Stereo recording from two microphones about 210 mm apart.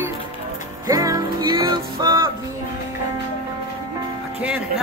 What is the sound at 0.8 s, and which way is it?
Music, 15° right (ahead or behind).